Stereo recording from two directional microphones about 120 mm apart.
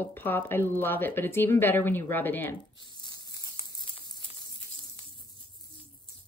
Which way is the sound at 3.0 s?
35° left (ahead or behind).